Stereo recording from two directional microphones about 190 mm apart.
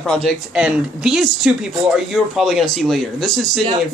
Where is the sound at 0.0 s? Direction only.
5° left (ahead or behind).